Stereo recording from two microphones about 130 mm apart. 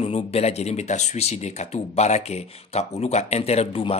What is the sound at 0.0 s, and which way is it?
Speech, 55° left (ahead or behind).